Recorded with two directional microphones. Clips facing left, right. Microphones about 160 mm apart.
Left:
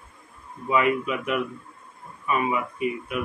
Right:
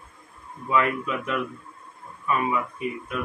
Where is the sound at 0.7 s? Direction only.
15° left (ahead or behind).